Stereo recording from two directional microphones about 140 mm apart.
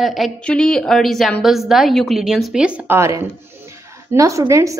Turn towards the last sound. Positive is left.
turn(degrees=-20)  # may be behind; listen again after turning